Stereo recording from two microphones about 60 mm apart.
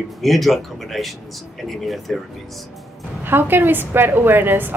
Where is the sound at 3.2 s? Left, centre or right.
Right.